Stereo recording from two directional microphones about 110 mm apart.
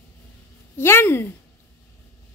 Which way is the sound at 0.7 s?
20° left (ahead or behind).